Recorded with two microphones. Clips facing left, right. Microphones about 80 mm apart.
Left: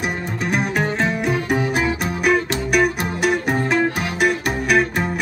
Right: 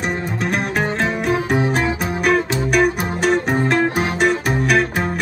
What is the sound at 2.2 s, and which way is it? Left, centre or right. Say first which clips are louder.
Music: right 1 dB; centre.